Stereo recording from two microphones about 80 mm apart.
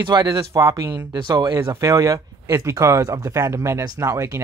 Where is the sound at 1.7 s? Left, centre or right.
Right.